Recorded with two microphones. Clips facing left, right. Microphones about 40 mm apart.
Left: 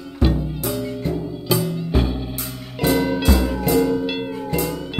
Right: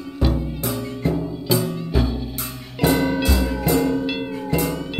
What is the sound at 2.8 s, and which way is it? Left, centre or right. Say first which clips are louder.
Music: even; right.